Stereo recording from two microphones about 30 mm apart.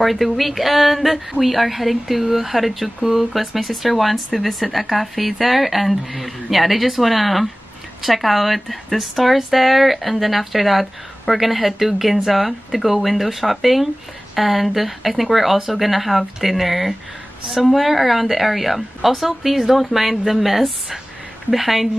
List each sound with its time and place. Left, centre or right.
0.0 s speech: centre